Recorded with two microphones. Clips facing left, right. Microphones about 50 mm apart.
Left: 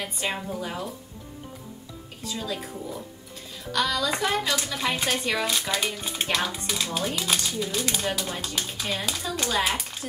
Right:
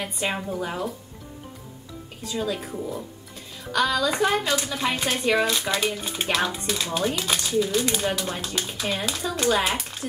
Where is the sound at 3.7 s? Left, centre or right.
Centre.